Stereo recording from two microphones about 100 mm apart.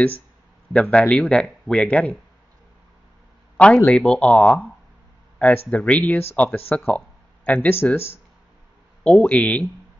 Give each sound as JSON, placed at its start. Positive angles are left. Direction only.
{"t": 0.7, "sound": "speech", "side_deg": 10}
{"t": 3.5, "sound": "speech", "side_deg": 10}
{"t": 5.7, "sound": "speech", "side_deg": 15}
{"t": 9.0, "sound": "speech", "side_deg": 10}